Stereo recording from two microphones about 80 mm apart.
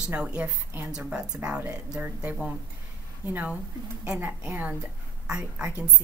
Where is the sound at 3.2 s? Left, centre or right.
Centre.